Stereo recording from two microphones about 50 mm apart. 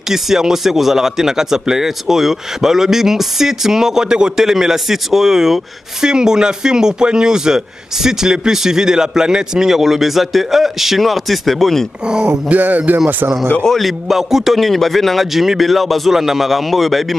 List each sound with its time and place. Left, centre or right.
0.1 s speech: centre
12.4 s music: right
13.7 s a man's voice: centre